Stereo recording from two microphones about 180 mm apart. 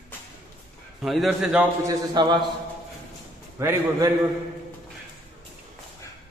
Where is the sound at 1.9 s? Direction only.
25° right (ahead or behind).